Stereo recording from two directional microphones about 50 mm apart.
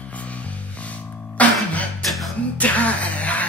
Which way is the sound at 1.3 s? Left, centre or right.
Left.